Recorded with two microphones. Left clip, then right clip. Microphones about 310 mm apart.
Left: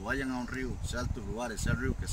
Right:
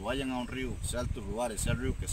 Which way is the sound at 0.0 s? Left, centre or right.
Centre.